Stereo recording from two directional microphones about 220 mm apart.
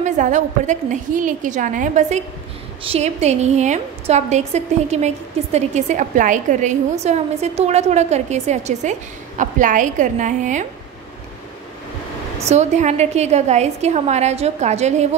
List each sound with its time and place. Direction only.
0.0 s a woman's voice: 35° right (ahead or behind)
12.4 s a woman's voice: 30° right (ahead or behind)